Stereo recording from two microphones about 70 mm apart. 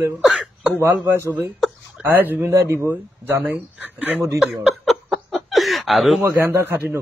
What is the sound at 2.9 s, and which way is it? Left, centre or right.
Speech, right.